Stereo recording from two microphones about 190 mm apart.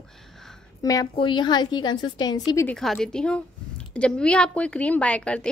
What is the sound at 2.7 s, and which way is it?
A woman's voice, centre (ahead or behind).